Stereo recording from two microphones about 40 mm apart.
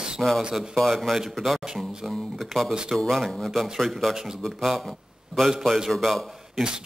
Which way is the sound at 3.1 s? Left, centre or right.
Centre.